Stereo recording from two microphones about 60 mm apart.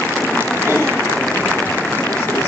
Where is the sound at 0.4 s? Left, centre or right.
Left.